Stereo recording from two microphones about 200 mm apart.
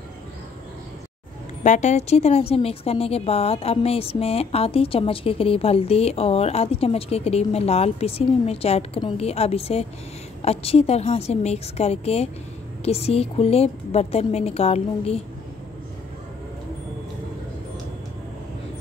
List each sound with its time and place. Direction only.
1.6 s speech: 35° left (ahead or behind)